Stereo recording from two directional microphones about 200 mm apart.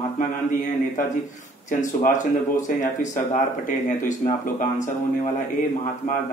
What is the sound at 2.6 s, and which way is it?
Speech, 40° left (ahead or behind).